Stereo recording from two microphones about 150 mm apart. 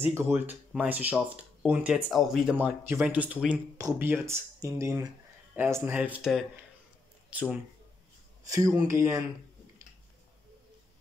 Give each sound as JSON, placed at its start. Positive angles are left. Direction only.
{"t": 0.1, "sound": "speech", "side_deg": -15}
{"t": 2.6, "sound": "speech", "side_deg": -10}
{"t": 8.5, "sound": "speech", "side_deg": -20}